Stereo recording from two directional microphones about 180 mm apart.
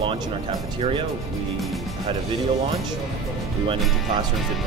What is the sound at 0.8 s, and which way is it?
Speech, 30° right (ahead or behind).